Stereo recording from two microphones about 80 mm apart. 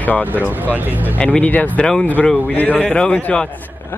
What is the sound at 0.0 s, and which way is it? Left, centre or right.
Speech, left.